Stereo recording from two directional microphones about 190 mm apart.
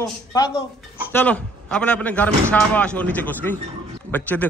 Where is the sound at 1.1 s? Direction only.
10° left (ahead or behind).